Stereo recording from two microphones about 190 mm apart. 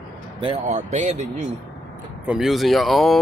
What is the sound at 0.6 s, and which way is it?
Speech, 40° right (ahead or behind).